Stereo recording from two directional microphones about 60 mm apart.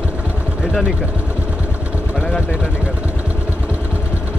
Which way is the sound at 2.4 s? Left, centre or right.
Centre.